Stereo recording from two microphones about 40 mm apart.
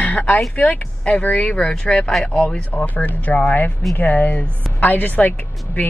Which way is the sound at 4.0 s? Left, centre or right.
Left.